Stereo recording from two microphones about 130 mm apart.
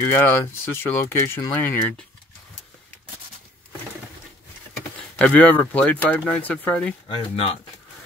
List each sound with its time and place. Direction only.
0.0 s speech: 20° left (ahead or behind)
4.9 s speech: 10° left (ahead or behind)
7.1 s speech: 45° left (ahead or behind)